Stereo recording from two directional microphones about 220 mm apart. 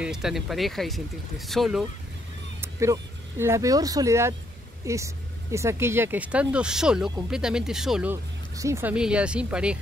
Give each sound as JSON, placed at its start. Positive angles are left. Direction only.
{"t": 0.0, "sound": "speech", "side_deg": 0}
{"t": 2.6, "sound": "speech", "side_deg": -10}